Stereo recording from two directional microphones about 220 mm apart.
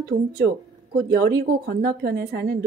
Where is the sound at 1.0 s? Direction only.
45° right (ahead or behind).